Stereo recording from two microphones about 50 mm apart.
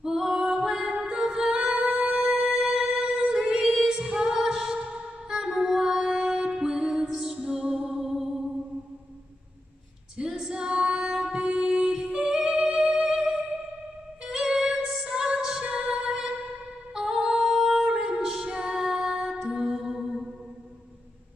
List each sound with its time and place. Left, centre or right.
0.0 s music: centre
10.1 s female singing: centre
11.4 s music: centre
16.9 s female singing: centre